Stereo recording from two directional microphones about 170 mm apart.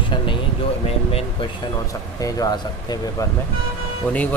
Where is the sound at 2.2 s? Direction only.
20° left (ahead or behind).